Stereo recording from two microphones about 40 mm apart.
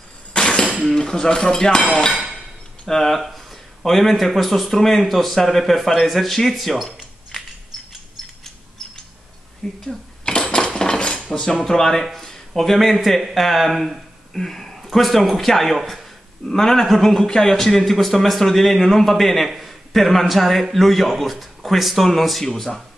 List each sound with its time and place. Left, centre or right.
0.3 s a sound: left
0.9 s a man's voice: centre
2.9 s a man's voice: centre
9.6 s a man's voice: centre
10.2 s a sound: centre
10.7 s cutlery: centre
11.3 s a man's voice: centre
16.4 s a man's voice: centre